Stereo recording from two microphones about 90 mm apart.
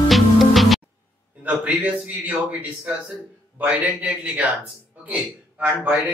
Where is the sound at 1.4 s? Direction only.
15° right (ahead or behind).